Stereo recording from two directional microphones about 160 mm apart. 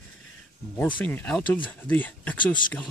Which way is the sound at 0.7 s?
10° left (ahead or behind).